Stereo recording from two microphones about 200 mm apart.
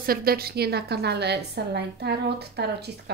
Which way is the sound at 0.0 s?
50° right (ahead or behind).